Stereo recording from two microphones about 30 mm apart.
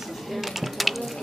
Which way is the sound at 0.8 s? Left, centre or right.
Centre.